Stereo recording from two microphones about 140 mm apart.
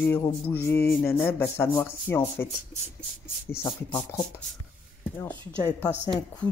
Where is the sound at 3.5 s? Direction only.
20° left (ahead or behind).